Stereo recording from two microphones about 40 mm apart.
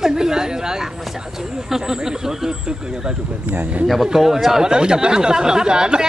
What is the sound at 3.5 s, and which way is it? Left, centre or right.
Speech, right.